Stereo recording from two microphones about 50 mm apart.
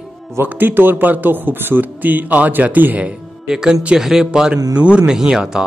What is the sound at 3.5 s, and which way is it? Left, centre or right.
Speech, centre.